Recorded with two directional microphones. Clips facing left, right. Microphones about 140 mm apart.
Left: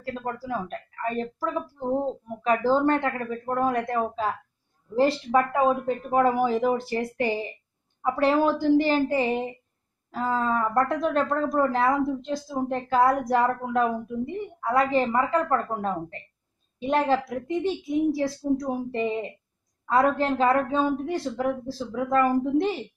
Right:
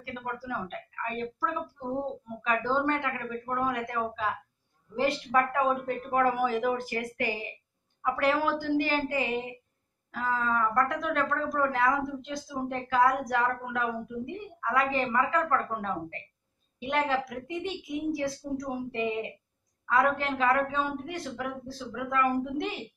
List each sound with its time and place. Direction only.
0.0 s speech: 35° left (ahead or behind)